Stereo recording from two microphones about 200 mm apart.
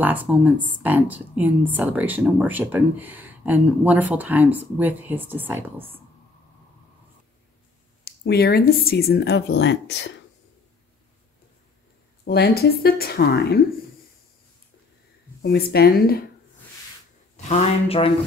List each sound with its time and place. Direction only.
0.0 s a woman's voice: 10° right (ahead or behind)
8.0 s speech: 55° left (ahead or behind)
12.3 s speech: 50° left (ahead or behind)
15.4 s speech: 50° left (ahead or behind)
17.4 s speech: 35° left (ahead or behind)